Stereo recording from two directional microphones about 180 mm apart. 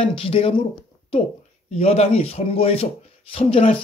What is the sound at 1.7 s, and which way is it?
Speech, 35° left (ahead or behind).